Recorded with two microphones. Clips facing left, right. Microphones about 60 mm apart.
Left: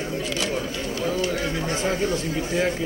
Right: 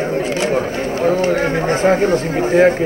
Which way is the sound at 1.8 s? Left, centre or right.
Right.